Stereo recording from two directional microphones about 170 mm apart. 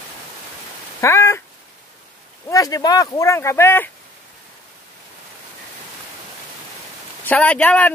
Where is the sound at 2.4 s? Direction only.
20° left (ahead or behind).